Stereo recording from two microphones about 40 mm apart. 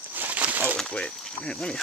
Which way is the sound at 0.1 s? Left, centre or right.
Right.